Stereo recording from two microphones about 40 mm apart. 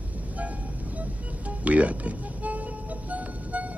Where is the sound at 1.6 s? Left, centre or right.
Right.